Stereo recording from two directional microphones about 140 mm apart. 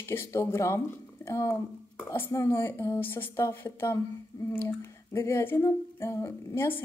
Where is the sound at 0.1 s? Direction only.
15° left (ahead or behind).